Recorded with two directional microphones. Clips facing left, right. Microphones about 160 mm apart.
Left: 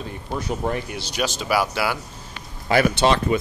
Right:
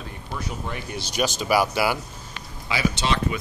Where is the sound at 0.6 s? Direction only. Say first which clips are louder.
Left 12 dB; 55° left (ahead or behind).